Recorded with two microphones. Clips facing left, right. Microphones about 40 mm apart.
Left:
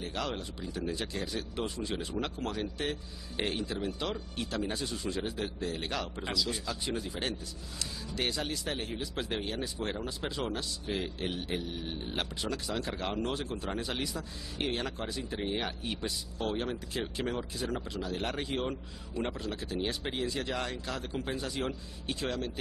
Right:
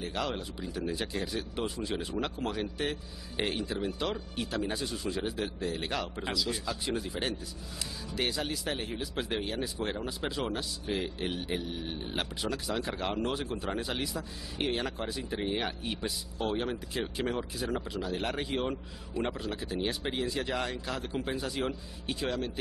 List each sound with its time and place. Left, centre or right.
0.0 s speech: centre